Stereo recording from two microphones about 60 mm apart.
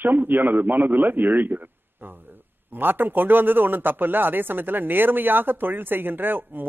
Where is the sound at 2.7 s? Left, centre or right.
Right.